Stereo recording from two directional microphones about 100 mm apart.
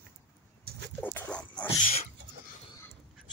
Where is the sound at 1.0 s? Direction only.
20° left (ahead or behind).